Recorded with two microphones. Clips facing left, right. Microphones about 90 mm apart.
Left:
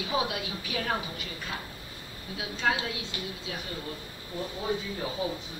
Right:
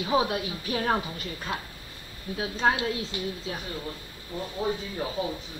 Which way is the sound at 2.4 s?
40° right (ahead or behind).